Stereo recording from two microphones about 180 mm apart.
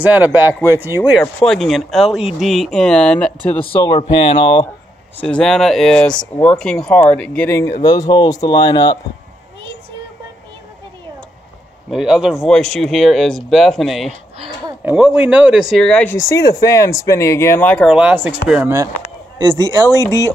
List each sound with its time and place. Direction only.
0.0 s speech: 10° right (ahead or behind)
1.2 s speech: 5° left (ahead or behind)
3.6 s speech: 25° left (ahead or behind)
5.1 s speech: 5° left (ahead or behind)
11.9 s speech: 5° right (ahead or behind)
14.8 s speech: 10° right (ahead or behind)
15.8 s speech: 5° left (ahead or behind)
17.8 s speech: 5° right (ahead or behind)